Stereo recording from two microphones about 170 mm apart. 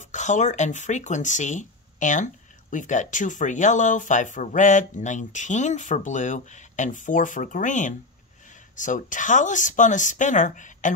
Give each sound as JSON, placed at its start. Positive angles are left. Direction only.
{"t": 0.0, "sound": "speech", "side_deg": 45}